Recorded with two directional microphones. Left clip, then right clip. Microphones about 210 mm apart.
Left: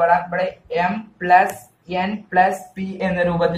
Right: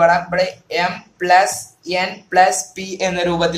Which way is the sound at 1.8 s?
50° right (ahead or behind).